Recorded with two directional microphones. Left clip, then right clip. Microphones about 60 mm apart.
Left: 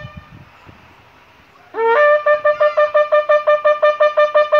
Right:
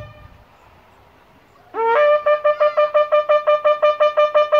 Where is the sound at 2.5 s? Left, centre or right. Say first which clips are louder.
Left 2 dB; centre.